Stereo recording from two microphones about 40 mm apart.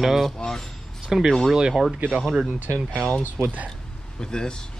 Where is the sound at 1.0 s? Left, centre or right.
Centre.